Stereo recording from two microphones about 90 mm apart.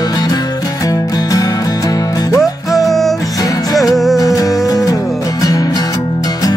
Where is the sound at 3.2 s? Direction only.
40° left (ahead or behind).